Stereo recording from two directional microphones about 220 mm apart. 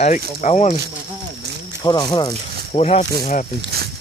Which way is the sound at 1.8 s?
20° left (ahead or behind).